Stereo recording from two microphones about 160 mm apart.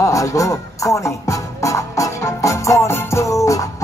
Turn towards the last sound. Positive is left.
turn(degrees=20)  # may be behind; listen again after turning